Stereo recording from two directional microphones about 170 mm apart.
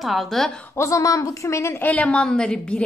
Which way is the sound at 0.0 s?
Centre (ahead or behind).